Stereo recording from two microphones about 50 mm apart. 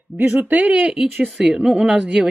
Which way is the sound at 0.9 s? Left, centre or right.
Centre.